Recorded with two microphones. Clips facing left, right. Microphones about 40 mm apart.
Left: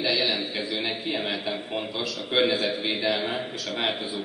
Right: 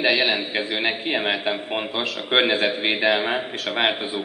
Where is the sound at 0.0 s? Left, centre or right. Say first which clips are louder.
Right 5 dB; right.